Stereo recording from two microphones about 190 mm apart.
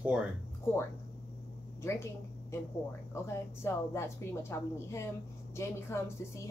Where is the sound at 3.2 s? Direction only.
15° left (ahead or behind).